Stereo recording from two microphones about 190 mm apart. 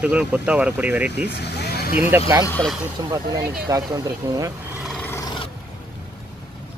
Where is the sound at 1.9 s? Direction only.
10° right (ahead or behind).